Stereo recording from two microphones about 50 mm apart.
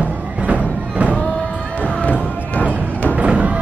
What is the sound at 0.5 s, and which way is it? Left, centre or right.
Music, right.